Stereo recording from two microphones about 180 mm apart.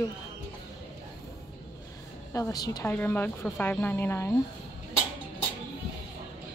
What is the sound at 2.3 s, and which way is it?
Speech, 20° left (ahead or behind).